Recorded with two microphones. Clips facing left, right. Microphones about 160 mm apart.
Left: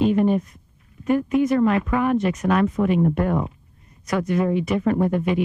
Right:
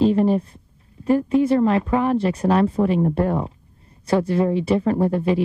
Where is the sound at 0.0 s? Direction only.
30° right (ahead or behind).